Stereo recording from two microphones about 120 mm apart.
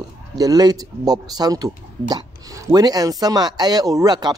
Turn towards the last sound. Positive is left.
turn(degrees=-35)  # may be behind; listen again after turning